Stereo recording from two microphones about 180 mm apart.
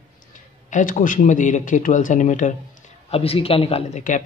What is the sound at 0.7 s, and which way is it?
A man's voice, 45° left (ahead or behind).